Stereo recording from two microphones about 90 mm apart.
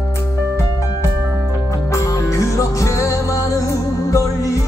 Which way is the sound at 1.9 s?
35° left (ahead or behind).